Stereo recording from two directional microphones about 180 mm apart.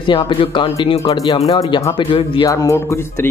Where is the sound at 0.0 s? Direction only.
30° left (ahead or behind).